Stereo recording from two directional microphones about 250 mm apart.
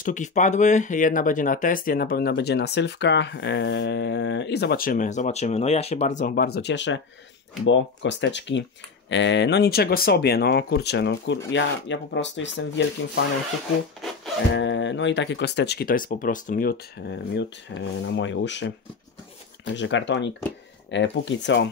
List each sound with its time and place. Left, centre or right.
0.0 s speech: left
14.0 s music: centre
14.5 s speech: left
19.7 s speech: left